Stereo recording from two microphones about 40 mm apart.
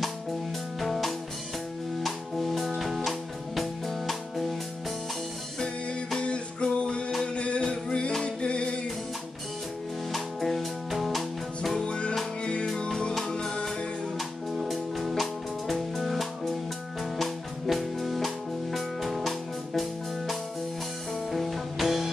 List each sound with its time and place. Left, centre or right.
0.7 s music: centre
6.1 s music: left
10.1 s music: centre
11.8 s music: left
14.6 s music: centre